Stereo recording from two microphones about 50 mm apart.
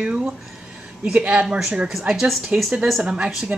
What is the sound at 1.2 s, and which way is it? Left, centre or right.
Speech, right.